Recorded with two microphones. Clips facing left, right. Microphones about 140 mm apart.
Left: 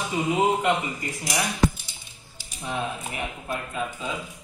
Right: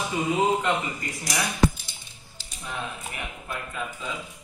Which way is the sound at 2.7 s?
30° left (ahead or behind).